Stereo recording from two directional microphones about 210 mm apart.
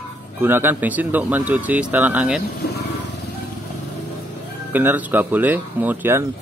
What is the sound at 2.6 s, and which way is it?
Vehicle, 45° left (ahead or behind).